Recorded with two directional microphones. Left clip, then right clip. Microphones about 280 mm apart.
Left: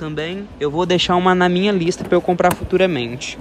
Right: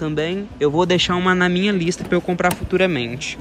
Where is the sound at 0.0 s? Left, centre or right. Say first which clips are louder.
Right 3 dB; centre.